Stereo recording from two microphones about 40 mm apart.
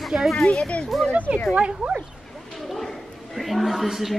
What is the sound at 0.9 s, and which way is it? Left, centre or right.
Speech, centre.